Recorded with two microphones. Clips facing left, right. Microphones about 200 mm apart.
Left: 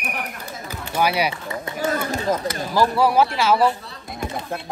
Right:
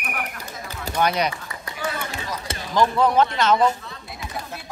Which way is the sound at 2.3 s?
50° left (ahead or behind).